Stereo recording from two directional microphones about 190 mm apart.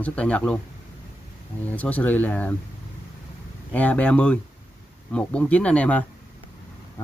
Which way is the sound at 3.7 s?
5° left (ahead or behind).